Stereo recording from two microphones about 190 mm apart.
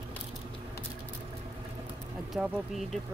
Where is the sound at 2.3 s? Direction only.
Centre (ahead or behind).